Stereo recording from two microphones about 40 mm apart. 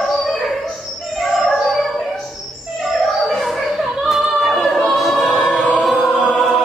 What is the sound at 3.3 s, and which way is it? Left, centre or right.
Music, centre.